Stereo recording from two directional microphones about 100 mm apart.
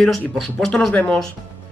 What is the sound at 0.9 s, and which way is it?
Speech, 15° left (ahead or behind).